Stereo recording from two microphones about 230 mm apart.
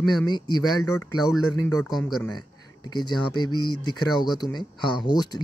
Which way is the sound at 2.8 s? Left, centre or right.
Centre.